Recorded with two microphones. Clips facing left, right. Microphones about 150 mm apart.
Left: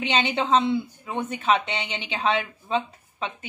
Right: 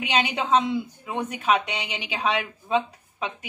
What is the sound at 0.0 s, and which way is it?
Speech, 10° right (ahead or behind).